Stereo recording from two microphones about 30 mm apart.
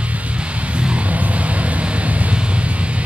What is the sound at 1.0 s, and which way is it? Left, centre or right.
Vehicle, right.